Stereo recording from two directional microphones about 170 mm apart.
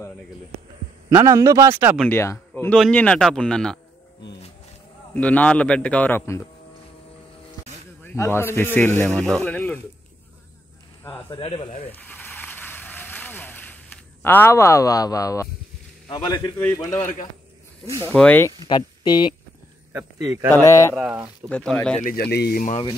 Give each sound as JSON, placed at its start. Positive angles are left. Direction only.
{"t": 1.1, "sound": "speech", "side_deg": -15}
{"t": 2.0, "sound": "a man's voice", "side_deg": 15}
{"t": 5.1, "sound": "a man's voice", "side_deg": 10}
{"t": 8.0, "sound": "speech", "side_deg": 15}
{"t": 11.2, "sound": "speech", "side_deg": 30}
{"t": 11.9, "sound": "a sound", "side_deg": 10}
{"t": 14.2, "sound": "speech", "side_deg": 10}
{"t": 16.5, "sound": "a man's voice", "side_deg": 15}
{"t": 18.7, "sound": "speech", "side_deg": 25}
{"t": 19.9, "sound": "speech", "side_deg": -15}
{"t": 20.5, "sound": "a man's voice", "side_deg": 15}
{"t": 20.9, "sound": "speech", "side_deg": -5}
{"t": 21.5, "sound": "a man's voice", "side_deg": 10}
{"t": 22.0, "sound": "speech", "side_deg": 65}